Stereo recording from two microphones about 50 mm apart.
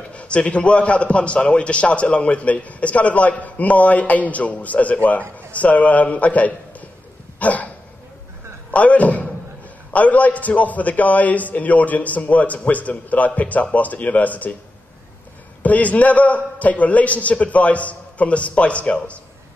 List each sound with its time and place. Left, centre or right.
0.1 s a man's voice: left
7.3 s a sound: left
8.7 s a man's voice: left
15.6 s a man's voice: left